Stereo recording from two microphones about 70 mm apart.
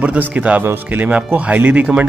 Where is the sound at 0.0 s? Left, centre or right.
Right.